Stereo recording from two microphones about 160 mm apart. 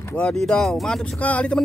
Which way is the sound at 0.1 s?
5° left (ahead or behind).